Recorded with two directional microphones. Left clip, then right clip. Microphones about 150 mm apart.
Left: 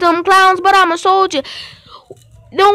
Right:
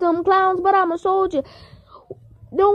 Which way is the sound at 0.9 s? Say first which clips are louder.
Left 7 dB; 90° left.